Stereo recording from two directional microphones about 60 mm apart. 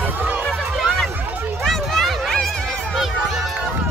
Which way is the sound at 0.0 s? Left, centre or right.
Right.